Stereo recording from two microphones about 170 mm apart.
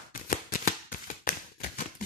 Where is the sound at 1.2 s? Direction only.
55° left (ahead or behind).